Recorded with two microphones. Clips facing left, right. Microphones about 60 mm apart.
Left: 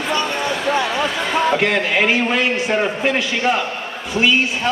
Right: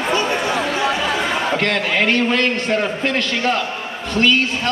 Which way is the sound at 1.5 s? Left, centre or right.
Centre.